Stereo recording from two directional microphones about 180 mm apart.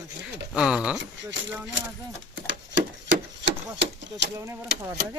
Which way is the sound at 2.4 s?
90° right.